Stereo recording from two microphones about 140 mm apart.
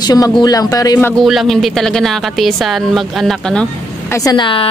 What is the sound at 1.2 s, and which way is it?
A woman's voice, centre (ahead or behind).